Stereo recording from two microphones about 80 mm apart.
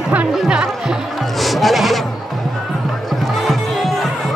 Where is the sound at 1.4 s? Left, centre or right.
Centre.